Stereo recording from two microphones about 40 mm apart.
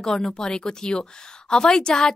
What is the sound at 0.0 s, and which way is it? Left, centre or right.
A woman's voice, centre.